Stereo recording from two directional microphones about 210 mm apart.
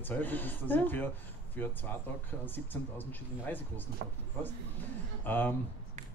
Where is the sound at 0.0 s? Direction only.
10° left (ahead or behind).